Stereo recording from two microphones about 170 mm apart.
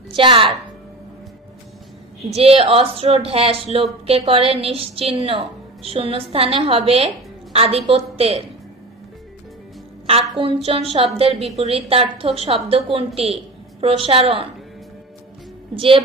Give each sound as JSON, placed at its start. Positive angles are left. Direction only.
{"t": 0.1, "sound": "a woman's voice", "side_deg": -30}
{"t": 2.3, "sound": "a woman's voice", "side_deg": -35}
{"t": 10.3, "sound": "a woman's voice", "side_deg": -35}
{"t": 15.7, "sound": "a woman's voice", "side_deg": -30}